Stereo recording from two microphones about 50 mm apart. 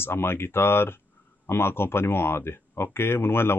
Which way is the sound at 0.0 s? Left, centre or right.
Left.